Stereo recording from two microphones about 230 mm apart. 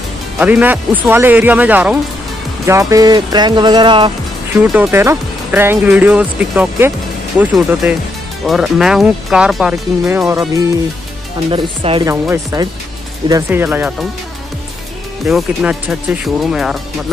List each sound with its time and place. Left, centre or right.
0.4 s speech: centre
4.7 s speech: centre
11.5 s speech: right
12.1 s speech: centre
15.2 s speech: centre